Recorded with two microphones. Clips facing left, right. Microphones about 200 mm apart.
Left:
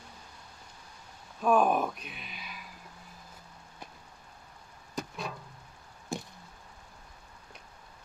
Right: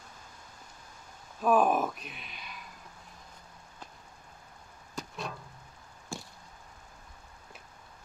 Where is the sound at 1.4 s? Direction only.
Centre (ahead or behind).